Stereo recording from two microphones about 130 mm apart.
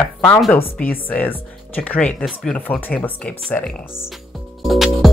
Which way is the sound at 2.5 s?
15° left (ahead or behind).